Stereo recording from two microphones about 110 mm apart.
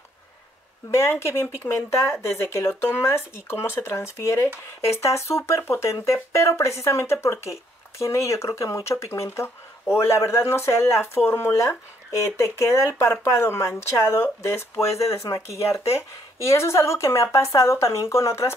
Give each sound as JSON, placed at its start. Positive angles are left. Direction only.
{"t": 1.2, "sound": "speech", "side_deg": 20}